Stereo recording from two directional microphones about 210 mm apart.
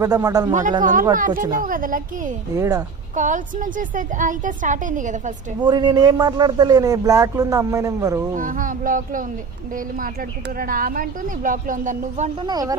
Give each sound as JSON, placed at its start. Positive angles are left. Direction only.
{"t": 0.0, "sound": "speech", "side_deg": -15}
{"t": 0.5, "sound": "a woman's voice", "side_deg": -35}
{"t": 2.5, "sound": "speech", "side_deg": -15}
{"t": 3.2, "sound": "a woman's voice", "side_deg": -40}
{"t": 5.6, "sound": "speech", "side_deg": -20}
{"t": 8.4, "sound": "a woman's voice", "side_deg": -40}
{"t": 10.6, "sound": "a woman's voice", "side_deg": -40}
{"t": 12.4, "sound": "speech", "side_deg": -20}